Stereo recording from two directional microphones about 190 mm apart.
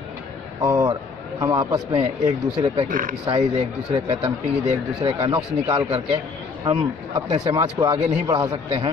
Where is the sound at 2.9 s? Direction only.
45° right (ahead or behind).